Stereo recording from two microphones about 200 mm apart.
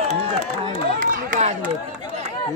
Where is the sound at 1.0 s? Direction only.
40° right (ahead or behind).